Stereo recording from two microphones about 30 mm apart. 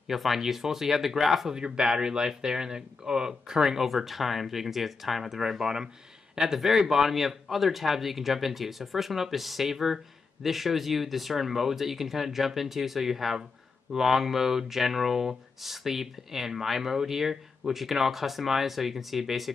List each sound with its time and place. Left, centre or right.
0.1 s speech: centre
1.5 s speech: right
3.9 s speech: centre